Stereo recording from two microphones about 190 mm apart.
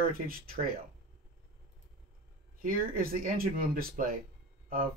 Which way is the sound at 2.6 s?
50° right (ahead or behind).